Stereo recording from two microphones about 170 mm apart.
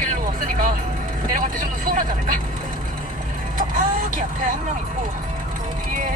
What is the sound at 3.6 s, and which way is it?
Vehicle, 50° right (ahead or behind).